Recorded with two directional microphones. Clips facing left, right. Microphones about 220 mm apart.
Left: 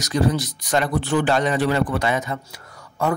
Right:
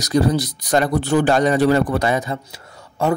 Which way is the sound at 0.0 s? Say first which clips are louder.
Right 3 dB; 35° right (ahead or behind).